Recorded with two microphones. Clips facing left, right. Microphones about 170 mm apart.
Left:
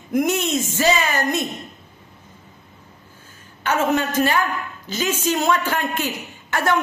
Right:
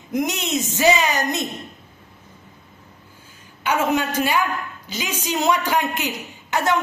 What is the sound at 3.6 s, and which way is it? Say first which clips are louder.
A man's voice: left 1 dB; 10° right (ahead or behind).